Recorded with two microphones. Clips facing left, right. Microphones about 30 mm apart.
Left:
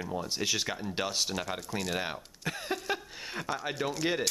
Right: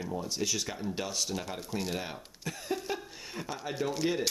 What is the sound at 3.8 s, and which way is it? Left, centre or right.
Speech, left.